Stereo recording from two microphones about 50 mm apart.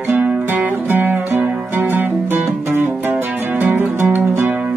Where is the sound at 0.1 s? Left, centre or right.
Right.